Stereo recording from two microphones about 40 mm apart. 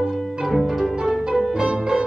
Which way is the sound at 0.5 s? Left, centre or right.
Centre.